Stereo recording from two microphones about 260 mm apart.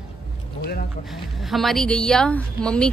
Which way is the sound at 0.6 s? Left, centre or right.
Left.